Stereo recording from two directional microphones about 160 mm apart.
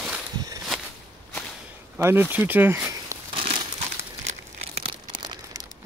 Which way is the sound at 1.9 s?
10° right (ahead or behind).